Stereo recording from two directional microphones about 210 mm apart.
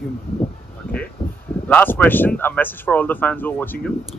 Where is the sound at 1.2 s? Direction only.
25° left (ahead or behind).